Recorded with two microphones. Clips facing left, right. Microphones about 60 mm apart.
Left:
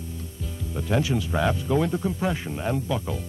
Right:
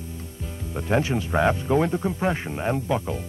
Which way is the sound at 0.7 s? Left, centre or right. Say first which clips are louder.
Right 2 dB; right.